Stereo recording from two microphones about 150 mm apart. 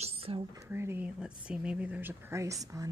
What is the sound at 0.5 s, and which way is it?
Speech, 15° right (ahead or behind).